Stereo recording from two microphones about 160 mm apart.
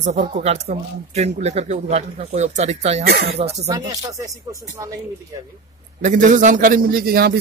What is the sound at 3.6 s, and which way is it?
Speech, 20° right (ahead or behind).